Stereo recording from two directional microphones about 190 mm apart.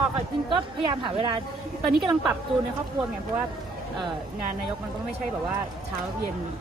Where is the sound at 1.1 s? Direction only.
25° right (ahead or behind).